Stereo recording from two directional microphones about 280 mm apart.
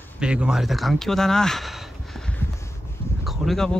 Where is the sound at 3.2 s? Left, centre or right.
Centre.